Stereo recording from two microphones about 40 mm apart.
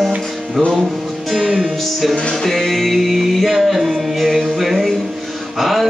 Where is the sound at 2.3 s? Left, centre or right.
Centre.